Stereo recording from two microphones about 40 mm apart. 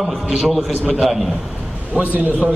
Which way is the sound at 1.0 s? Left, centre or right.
Centre.